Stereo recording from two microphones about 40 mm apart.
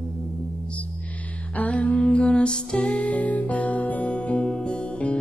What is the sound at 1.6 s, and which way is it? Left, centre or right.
Humming, left.